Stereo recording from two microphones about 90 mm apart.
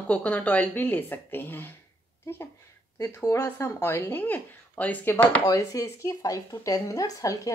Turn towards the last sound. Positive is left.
turn(degrees=40)  # may be behind; listen again after turning